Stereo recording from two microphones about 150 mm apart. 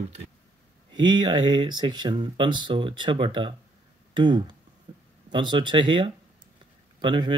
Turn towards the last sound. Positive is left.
turn(degrees=-30)  # may be behind; listen again after turning